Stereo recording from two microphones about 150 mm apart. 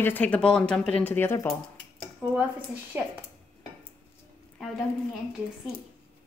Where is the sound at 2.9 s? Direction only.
15° right (ahead or behind).